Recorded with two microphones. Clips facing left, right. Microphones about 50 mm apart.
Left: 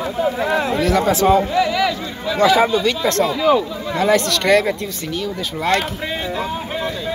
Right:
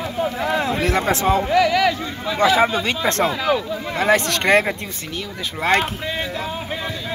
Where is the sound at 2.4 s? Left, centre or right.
Centre.